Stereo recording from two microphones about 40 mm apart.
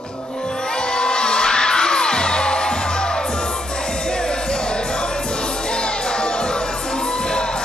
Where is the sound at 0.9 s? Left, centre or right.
Left.